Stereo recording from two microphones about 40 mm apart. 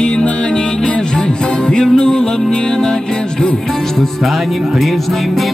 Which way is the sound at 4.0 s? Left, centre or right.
Centre.